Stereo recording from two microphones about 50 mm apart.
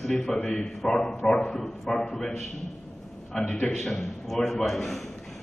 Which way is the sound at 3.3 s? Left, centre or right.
Left.